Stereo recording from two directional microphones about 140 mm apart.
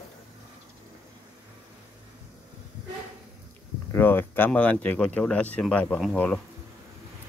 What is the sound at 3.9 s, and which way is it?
Speech, 15° left (ahead or behind).